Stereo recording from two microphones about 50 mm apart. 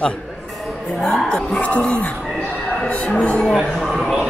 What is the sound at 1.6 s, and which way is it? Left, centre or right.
A woman's voice, left.